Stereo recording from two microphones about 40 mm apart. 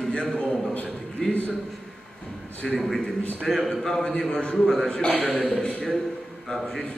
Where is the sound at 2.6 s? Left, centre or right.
Centre; by 5.8 s left.